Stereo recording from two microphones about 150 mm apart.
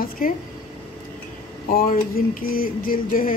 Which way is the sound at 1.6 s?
75° left (ahead or behind).